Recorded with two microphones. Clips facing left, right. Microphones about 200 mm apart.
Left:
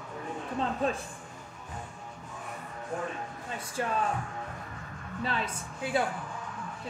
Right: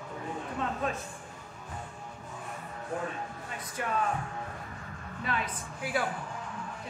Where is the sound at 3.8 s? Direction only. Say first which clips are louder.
Left 3 dB; 30° left (ahead or behind).